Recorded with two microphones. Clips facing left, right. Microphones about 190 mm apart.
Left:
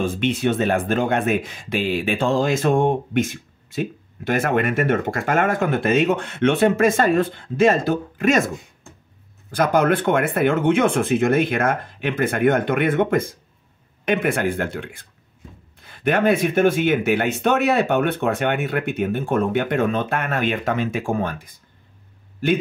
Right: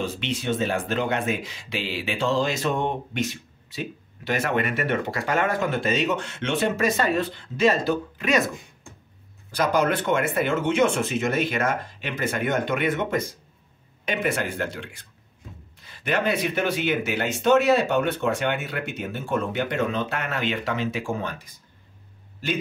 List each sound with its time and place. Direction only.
0.0 s speech: 50° left (ahead or behind)
9.5 s speech: 50° left (ahead or behind)